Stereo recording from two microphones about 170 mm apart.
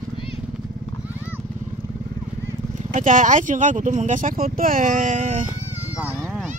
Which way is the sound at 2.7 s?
50° right (ahead or behind).